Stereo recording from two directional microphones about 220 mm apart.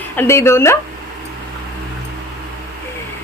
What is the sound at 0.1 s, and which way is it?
Speech, 10° left (ahead or behind).